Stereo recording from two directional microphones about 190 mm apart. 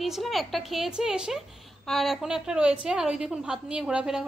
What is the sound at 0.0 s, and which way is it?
A woman's voice, centre (ahead or behind).